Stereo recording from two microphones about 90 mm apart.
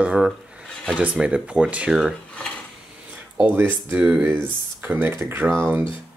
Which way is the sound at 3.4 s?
20° right (ahead or behind).